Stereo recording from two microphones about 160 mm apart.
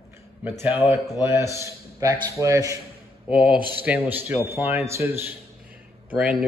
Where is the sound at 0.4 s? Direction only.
15° right (ahead or behind).